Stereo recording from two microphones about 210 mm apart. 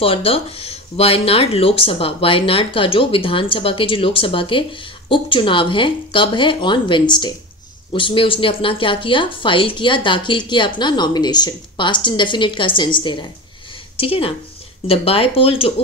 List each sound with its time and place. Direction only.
0.0 s a woman's voice: 25° left (ahead or behind)